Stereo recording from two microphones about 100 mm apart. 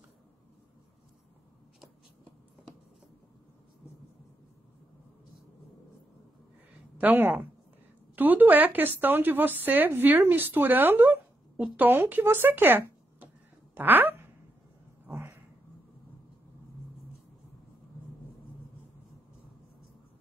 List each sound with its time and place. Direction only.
7.0 s a woman's voice: 20° right (ahead or behind)
15.0 s cat: 25° right (ahead or behind)